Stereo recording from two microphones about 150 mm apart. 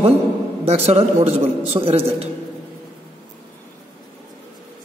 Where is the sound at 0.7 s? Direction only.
45° right (ahead or behind).